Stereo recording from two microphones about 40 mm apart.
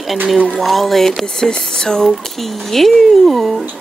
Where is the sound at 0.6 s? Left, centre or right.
Centre.